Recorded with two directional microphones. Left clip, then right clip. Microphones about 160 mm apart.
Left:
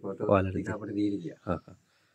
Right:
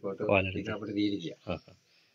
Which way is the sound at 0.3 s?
50° left (ahead or behind).